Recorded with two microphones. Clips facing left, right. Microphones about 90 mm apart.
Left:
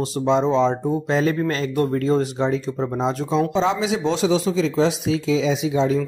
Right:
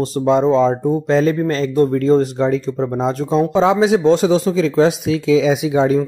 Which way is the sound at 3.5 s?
55° right (ahead or behind).